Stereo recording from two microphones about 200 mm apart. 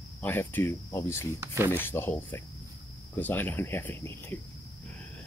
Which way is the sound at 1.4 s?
15° right (ahead or behind).